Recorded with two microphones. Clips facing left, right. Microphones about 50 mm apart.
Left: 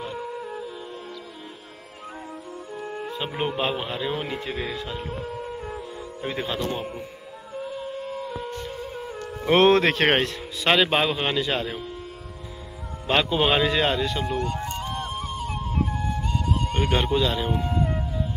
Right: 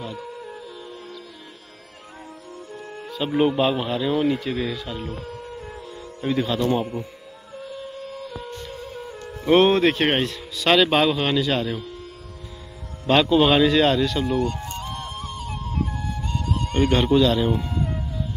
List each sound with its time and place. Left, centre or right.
0.2 s music: centre
3.3 s speech: centre
3.5 s speech: left
5.0 s music: centre
6.2 s speech: left
7.7 s music: centre
9.7 s speech: left
10.5 s speech: left
11.7 s speech: centre
13.0 s speech: centre
14.2 s speech: centre
14.8 s music: centre
17.8 s wind instrument: centre